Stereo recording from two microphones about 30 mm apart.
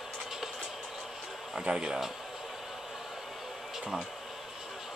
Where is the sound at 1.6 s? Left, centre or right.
Right.